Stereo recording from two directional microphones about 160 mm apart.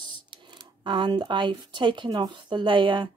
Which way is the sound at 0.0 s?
30° right (ahead or behind).